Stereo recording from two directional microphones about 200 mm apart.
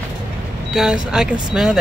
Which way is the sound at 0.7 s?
5° right (ahead or behind).